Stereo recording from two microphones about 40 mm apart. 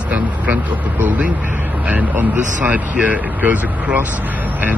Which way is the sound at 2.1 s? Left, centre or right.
Right.